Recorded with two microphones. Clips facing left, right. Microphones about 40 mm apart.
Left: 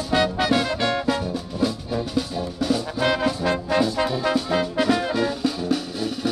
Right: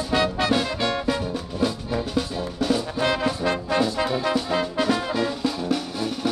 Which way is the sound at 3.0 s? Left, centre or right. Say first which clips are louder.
Left 3 dB; centre.